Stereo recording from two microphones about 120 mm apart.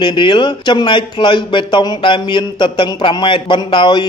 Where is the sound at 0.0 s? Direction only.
40° left (ahead or behind).